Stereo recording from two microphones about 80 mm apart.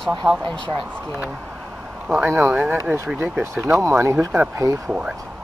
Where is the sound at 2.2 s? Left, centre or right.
Right.